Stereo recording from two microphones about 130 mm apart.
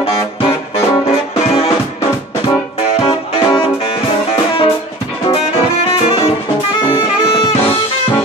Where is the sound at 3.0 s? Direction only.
45° left (ahead or behind).